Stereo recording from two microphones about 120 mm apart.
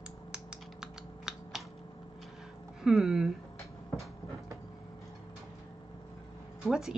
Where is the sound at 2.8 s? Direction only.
5° right (ahead or behind).